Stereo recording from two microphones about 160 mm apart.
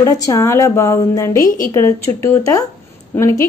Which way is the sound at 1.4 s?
60° left (ahead or behind).